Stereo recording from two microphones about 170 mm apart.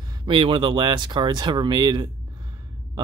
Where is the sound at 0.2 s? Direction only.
30° right (ahead or behind).